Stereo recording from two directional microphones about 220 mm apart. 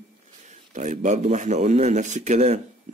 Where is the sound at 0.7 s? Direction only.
35° right (ahead or behind).